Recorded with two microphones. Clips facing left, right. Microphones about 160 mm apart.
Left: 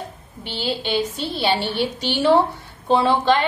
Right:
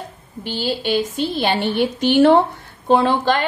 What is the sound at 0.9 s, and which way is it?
A woman's voice, 50° right (ahead or behind).